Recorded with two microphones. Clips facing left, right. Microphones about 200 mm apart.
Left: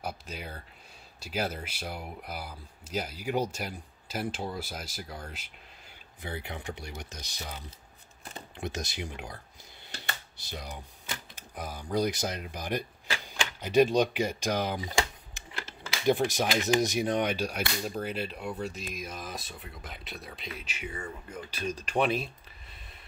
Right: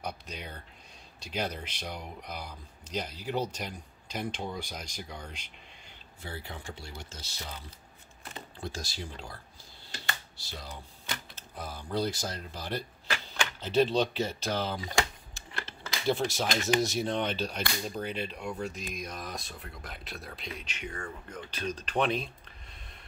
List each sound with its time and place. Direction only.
0.0 s speech: 5° left (ahead or behind)
6.2 s speech: 20° left (ahead or behind)
8.5 s speech: 20° left (ahead or behind)